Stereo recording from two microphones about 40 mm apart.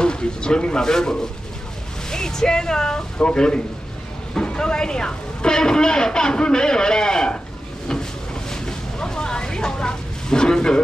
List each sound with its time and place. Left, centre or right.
0.0 s speech: left
8.5 s vehicle: centre